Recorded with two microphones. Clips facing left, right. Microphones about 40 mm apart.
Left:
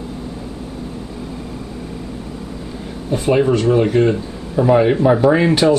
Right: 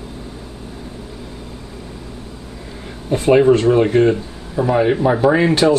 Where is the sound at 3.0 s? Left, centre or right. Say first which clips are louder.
Right 4 dB; centre.